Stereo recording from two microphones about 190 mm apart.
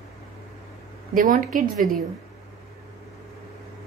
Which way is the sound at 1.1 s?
45° right (ahead or behind).